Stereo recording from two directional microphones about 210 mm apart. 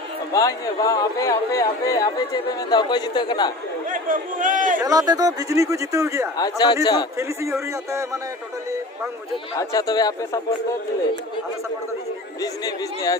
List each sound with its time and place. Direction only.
0.3 s speech: 15° left (ahead or behind)
3.9 s a man's voice: 40° right (ahead or behind)
4.7 s speech: 15° right (ahead or behind)
6.3 s speech: 20° left (ahead or behind)
9.6 s a man's voice: 15° left (ahead or behind)
12.4 s a man's voice: 15° left (ahead or behind)